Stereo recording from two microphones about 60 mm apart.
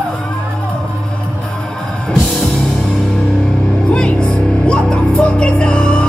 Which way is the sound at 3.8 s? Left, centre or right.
Centre.